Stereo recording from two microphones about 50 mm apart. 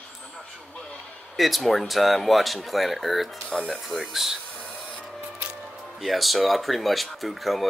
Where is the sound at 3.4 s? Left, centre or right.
Left.